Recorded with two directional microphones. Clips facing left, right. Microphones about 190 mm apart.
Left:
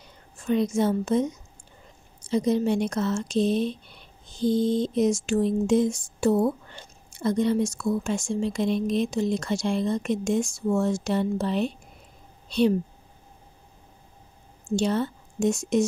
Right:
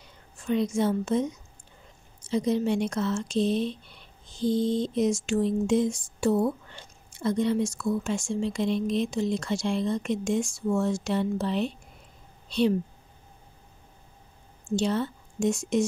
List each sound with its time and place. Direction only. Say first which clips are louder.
0.5 s speech: left 2 dB; 40° left (ahead or behind)
2.2 s speech: left 2 dB; 45° left (ahead or behind)
14.8 s speech: left 2 dB; 45° left (ahead or behind)